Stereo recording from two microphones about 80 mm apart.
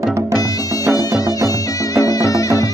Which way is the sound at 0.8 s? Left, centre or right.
Left.